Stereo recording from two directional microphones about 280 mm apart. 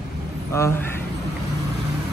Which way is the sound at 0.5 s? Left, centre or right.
Centre.